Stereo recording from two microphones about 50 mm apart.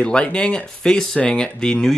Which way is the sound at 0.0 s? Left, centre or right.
Centre.